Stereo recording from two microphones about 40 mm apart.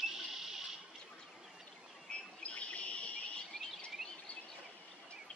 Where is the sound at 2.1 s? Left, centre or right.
Left.